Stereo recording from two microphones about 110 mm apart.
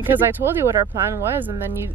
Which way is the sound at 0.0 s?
20° right (ahead or behind).